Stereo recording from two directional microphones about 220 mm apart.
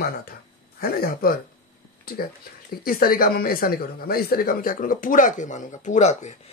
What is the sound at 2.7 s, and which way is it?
Speech, 40° left (ahead or behind).